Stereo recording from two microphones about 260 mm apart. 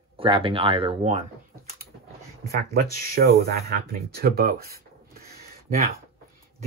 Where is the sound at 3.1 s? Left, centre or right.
Right.